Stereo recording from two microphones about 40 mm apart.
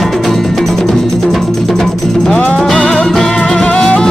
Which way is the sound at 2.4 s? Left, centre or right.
Left.